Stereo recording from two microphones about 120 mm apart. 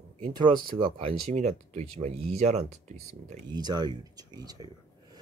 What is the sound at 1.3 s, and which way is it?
Speech, 80° right.